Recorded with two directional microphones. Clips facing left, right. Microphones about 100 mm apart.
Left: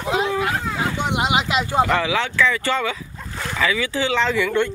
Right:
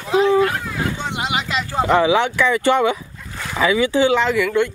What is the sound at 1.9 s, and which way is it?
Speech, 15° right (ahead or behind).